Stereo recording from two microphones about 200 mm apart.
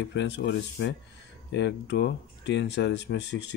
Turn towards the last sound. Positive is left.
turn(degrees=60)  # may be behind; listen again after turning